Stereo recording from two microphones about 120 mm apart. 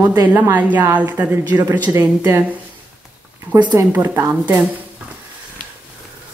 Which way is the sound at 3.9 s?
20° right (ahead or behind).